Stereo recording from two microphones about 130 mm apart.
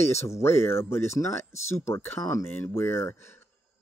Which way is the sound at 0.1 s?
20° left (ahead or behind).